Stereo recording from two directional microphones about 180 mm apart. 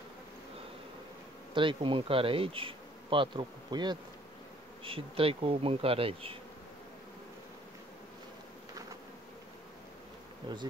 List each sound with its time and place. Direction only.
1.5 s speech: 25° right (ahead or behind)
4.8 s bee: 30° right (ahead or behind)